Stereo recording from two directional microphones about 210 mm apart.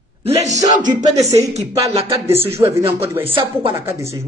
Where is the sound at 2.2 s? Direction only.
10° right (ahead or behind).